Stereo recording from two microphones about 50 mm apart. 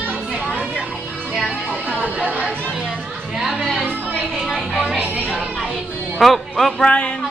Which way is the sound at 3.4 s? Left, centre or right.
Centre.